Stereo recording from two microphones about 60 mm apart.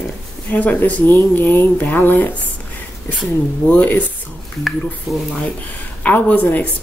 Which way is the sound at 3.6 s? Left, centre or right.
Left.